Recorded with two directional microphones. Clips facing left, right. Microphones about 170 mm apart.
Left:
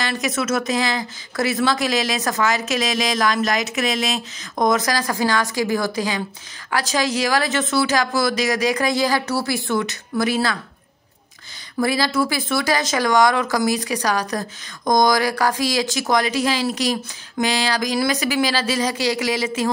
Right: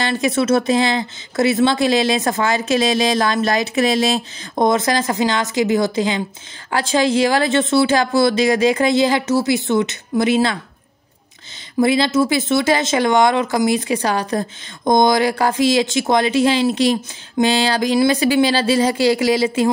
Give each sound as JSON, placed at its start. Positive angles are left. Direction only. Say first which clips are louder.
{"t": 0.0, "sound": "speech", "louder": "right 5 dB", "side_deg": -30}
{"t": 11.8, "sound": "speech", "louder": "right 5 dB", "side_deg": -20}